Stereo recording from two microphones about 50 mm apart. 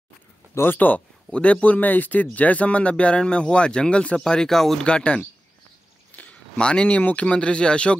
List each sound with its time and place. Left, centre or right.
0.7 s speech: left; by 4.8 s centre
4.8 s speech: left
6.1 s a sound: left
6.5 s speech: centre